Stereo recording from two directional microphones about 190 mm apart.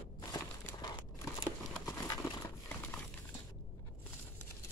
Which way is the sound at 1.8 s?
20° left (ahead or behind).